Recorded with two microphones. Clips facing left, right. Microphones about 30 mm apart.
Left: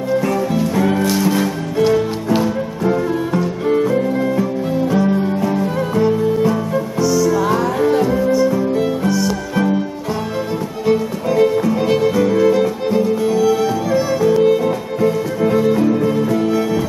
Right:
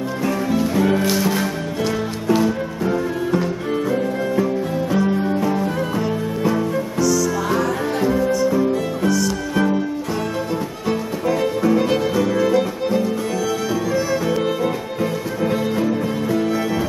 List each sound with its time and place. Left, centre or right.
0.2 s music: centre
7.0 s music: centre
7.2 s music: centre
10.9 s music: centre